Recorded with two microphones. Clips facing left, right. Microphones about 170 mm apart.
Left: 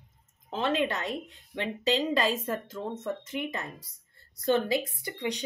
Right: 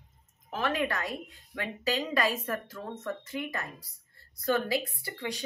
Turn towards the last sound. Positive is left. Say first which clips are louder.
# left 4 dB
turn(degrees=20)  # may be behind; listen again after turning